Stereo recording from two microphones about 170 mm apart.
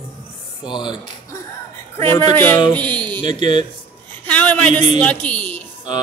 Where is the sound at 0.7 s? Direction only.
25° left (ahead or behind).